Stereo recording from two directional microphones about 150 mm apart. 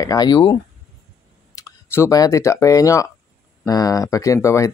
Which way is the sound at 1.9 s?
20° left (ahead or behind).